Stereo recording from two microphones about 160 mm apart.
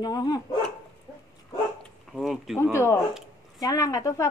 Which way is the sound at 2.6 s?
15° left (ahead or behind).